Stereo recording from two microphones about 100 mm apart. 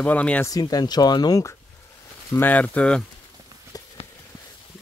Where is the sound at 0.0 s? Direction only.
15° left (ahead or behind).